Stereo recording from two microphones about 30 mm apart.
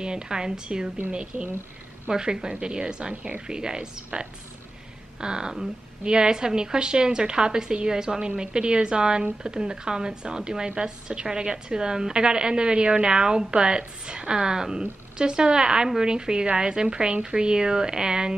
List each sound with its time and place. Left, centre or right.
0.0 s a woman's voice: right
1.3 s speech: right
2.0 s a woman's voice: right